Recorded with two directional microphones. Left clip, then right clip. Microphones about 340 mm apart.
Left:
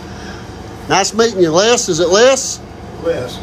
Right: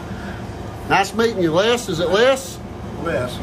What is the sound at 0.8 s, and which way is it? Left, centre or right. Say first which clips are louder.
Speech: left 4 dB; centre.